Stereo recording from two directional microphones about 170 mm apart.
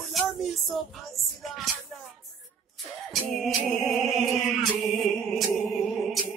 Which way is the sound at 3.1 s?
Centre (ahead or behind).